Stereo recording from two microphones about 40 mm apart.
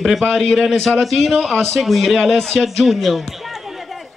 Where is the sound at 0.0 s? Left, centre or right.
Centre.